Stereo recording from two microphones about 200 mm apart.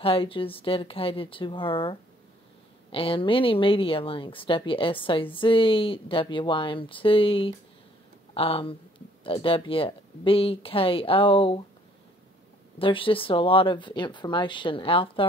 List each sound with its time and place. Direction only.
0.0 s speech: 25° left (ahead or behind)
12.7 s speech: 25° left (ahead or behind)